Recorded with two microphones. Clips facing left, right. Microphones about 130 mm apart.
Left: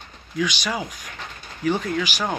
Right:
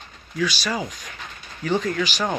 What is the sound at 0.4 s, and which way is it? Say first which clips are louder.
Speech: even; 15° left (ahead or behind).